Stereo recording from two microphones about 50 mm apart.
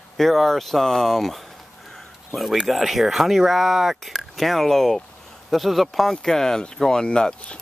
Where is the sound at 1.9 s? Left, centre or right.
Centre.